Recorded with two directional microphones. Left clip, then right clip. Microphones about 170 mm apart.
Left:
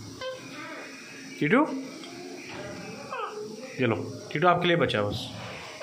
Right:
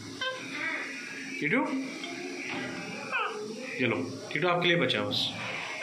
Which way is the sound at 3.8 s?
55° left (ahead or behind).